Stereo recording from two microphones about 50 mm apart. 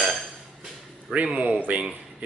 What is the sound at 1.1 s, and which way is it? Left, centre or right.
Speech, right.